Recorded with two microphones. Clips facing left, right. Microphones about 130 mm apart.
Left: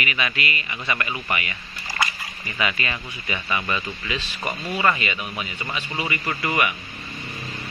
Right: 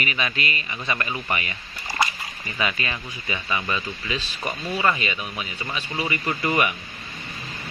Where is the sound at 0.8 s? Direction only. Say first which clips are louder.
Even; 25° right (ahead or behind).